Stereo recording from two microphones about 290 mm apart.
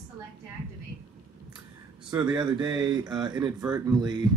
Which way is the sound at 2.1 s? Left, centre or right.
Centre.